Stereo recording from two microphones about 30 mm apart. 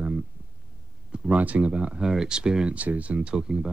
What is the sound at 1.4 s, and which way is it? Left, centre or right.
Speech, right.